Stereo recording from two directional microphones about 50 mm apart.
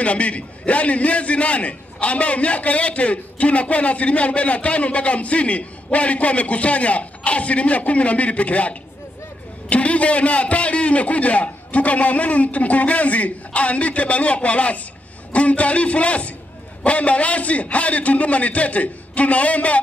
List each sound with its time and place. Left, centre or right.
0.0 s a man's voice: left